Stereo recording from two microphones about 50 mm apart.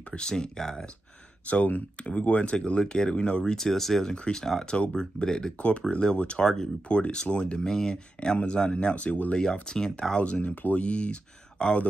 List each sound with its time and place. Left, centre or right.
0.1 s speech: centre
1.4 s speech: left
3.5 s speech: centre
4.0 s speech: centre
5.6 s speech: left
9.3 s speech: centre